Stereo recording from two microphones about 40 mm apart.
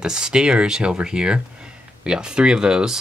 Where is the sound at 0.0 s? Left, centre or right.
Centre.